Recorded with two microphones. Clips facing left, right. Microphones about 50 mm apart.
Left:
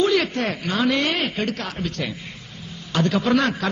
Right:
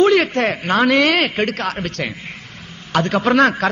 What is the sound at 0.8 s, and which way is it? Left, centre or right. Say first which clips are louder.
Speech: right 6 dB; right.